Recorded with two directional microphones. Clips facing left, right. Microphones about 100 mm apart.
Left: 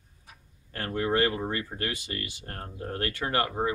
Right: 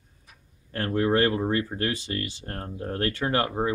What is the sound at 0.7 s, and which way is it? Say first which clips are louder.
Speech: right 4 dB; 30° right (ahead or behind).